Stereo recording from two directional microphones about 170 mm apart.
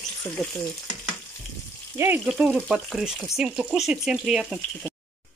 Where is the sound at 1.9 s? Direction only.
15° right (ahead or behind).